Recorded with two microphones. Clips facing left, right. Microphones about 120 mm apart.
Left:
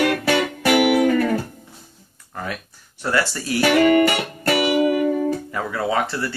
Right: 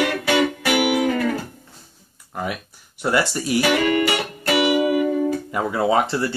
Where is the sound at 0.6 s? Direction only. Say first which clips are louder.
Left 3 dB; 45° left (ahead or behind).